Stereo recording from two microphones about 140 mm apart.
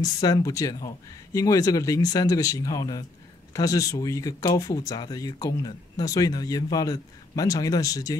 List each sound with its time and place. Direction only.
0.0 s speech: 30° left (ahead or behind)